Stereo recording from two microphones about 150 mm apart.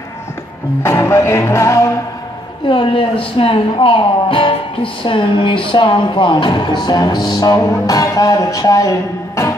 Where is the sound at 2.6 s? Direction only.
35° left (ahead or behind).